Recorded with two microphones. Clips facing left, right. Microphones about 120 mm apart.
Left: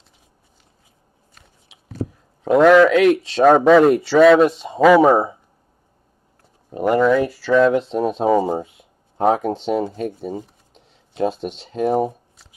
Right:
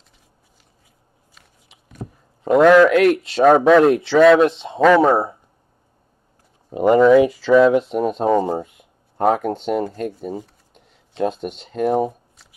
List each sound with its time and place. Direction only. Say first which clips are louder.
2.4 s speech: even; centre (ahead or behind)
6.7 s speech: right 4 dB; 15° right (ahead or behind)
7.9 s speech: even; centre (ahead or behind)